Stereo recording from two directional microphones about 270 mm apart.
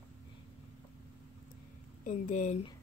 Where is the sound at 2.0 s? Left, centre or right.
Left.